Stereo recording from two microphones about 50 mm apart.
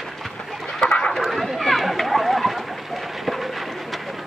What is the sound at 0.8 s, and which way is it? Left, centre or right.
Chicken, centre.